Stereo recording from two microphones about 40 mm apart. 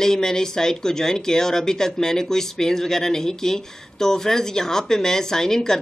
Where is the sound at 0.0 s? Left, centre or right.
Centre.